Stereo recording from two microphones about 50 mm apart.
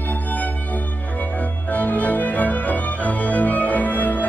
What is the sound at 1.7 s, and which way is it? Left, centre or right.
Music, left.